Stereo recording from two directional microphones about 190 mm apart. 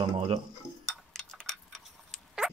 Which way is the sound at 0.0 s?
25° right (ahead or behind).